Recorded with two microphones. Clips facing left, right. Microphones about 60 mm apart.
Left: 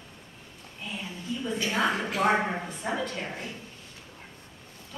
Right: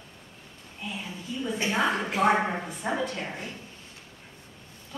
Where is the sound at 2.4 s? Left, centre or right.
Centre.